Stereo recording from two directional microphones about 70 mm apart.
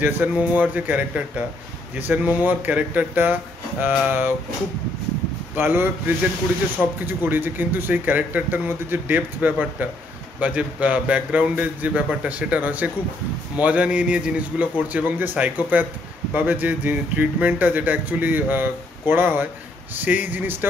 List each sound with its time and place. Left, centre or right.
0.0 s speech: right
5.6 s speech: right